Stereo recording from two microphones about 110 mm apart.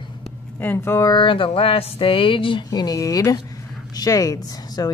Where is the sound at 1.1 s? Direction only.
50° left (ahead or behind).